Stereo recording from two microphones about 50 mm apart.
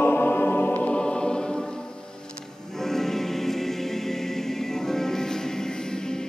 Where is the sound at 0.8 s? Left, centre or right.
Centre.